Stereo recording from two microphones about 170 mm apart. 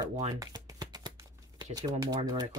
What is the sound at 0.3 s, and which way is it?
Shuffling cards, 20° right (ahead or behind).